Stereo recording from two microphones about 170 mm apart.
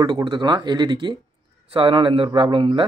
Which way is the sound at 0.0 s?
30° right (ahead or behind).